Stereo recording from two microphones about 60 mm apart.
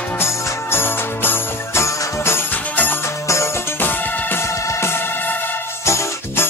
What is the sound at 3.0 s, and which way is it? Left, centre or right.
Music, left.